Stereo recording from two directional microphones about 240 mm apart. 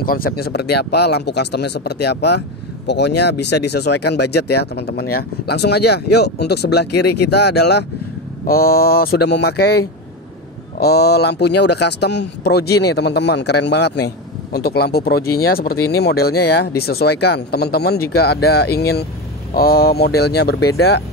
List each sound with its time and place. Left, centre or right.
0.0 s speech: left
10.8 s speech: left